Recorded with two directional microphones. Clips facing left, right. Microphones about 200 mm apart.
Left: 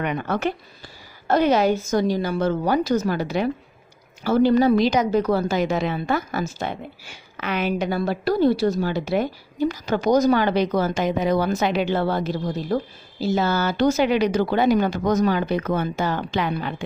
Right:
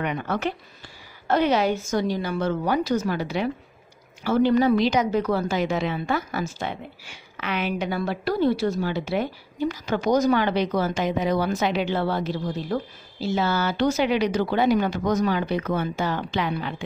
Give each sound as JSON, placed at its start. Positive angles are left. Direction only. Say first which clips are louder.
{"t": 0.0, "sound": "a woman's voice", "louder": "left 2 dB", "side_deg": 50}